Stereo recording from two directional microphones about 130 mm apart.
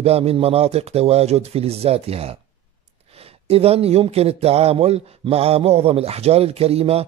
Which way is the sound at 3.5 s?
50° right (ahead or behind).